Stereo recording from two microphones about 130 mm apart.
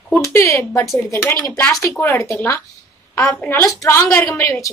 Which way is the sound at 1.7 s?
25° left (ahead or behind).